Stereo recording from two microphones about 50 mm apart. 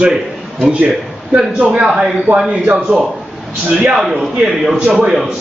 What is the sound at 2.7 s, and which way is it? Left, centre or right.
A man's voice, centre.